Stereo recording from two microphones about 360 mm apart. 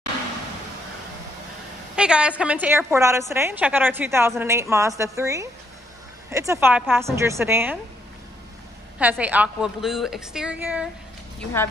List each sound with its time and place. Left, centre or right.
2.0 s a woman's voice: centre
9.0 s a woman's voice: centre